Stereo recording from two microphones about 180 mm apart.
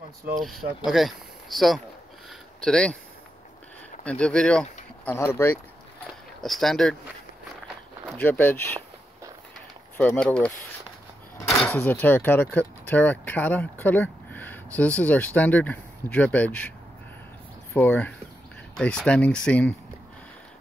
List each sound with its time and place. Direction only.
0.4 s speech: centre (ahead or behind)
2.2 s a sound: 5° left (ahead or behind)
4.0 s speech: 5° left (ahead or behind)
6.4 s speech: centre (ahead or behind)
8.1 s speech: 10° left (ahead or behind)
9.9 s speech: 5° left (ahead or behind)
17.7 s speech: 10° left (ahead or behind)